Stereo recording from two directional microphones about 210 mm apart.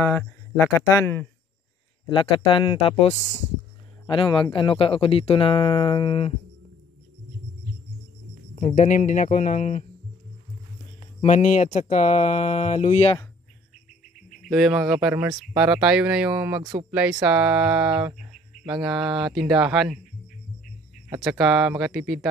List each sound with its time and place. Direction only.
0.0 s speech: 10° left (ahead or behind)
2.0 s speech: 25° left (ahead or behind)
8.5 s speech: 35° left (ahead or behind)
11.1 s speech: 35° left (ahead or behind)
14.5 s speech: centre (ahead or behind)
21.1 s speech: 5° right (ahead or behind)